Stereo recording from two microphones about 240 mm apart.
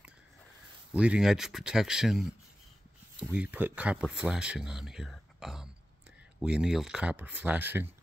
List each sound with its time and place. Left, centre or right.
0.9 s speech: centre